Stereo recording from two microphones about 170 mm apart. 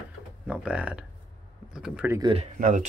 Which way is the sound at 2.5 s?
55° right (ahead or behind).